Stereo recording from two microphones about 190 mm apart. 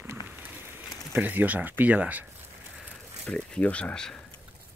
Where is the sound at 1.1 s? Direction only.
10° right (ahead or behind).